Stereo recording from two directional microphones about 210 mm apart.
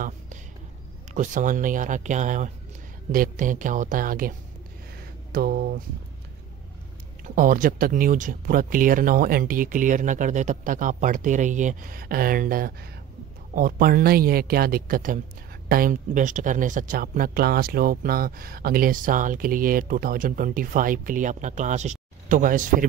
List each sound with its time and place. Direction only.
1.1 s speech: 35° right (ahead or behind)
7.2 s speech: 40° right (ahead or behind)